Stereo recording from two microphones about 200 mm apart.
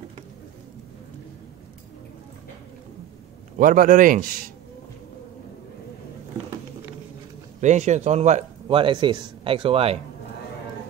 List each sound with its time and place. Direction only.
3.5 s a man's voice: 45° right (ahead or behind)
7.6 s a man's voice: 35° right (ahead or behind)